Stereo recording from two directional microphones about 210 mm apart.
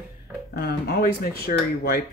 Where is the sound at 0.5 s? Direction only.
45° left (ahead or behind).